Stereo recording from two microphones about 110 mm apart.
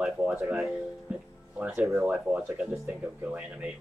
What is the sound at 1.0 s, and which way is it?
Music, 10° right (ahead or behind).